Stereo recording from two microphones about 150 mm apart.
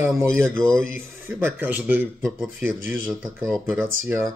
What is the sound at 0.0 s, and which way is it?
Speech, 15° right (ahead or behind).